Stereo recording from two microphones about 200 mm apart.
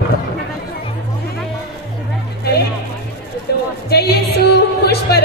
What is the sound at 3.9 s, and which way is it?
Music, 55° left (ahead or behind).